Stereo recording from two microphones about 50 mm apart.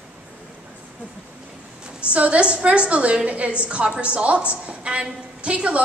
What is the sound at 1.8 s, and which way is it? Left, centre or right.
A woman's voice, right.